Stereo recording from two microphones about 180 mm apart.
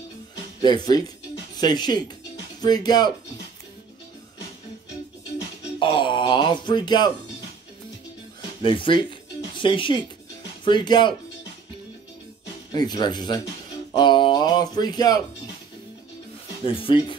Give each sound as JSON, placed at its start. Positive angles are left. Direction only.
{"t": 0.6, "sound": "speech", "side_deg": 25}
{"t": 5.8, "sound": "a sound", "side_deg": 25}
{"t": 8.4, "sound": "music", "side_deg": 30}
{"t": 9.6, "sound": "speech", "side_deg": 25}
{"t": 12.7, "sound": "speech", "side_deg": 20}
{"t": 13.9, "sound": "a sound", "side_deg": 25}
{"t": 16.6, "sound": "speech", "side_deg": 30}